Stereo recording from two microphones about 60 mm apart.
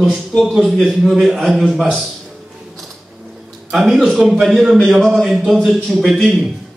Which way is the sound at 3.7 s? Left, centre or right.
Centre.